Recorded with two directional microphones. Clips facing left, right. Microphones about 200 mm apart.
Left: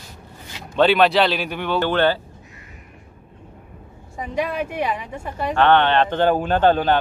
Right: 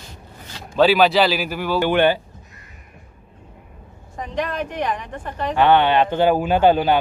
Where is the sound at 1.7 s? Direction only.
15° right (ahead or behind).